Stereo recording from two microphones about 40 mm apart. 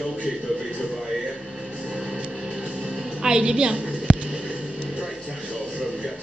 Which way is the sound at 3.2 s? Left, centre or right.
Centre.